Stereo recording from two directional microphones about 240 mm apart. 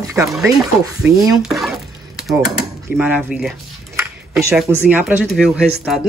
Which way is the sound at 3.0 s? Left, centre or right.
Centre.